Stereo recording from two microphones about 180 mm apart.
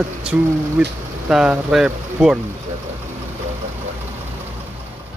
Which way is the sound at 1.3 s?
5° right (ahead or behind).